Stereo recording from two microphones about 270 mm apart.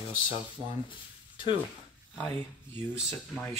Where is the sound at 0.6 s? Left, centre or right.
Centre.